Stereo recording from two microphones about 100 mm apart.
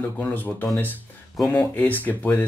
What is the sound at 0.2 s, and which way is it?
Speech, 20° left (ahead or behind).